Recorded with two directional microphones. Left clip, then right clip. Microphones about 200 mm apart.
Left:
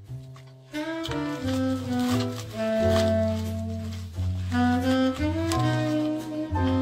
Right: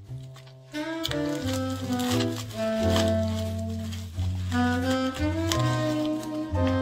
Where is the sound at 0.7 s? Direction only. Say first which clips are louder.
Even; centre (ahead or behind).